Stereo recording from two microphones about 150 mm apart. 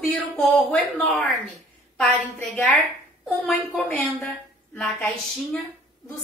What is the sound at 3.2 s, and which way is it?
Speech, centre (ahead or behind).